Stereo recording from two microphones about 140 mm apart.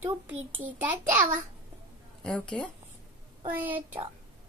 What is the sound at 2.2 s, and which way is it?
Speech, 5° left (ahead or behind).